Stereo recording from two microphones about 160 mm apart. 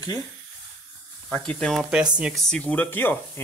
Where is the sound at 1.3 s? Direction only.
10° left (ahead or behind).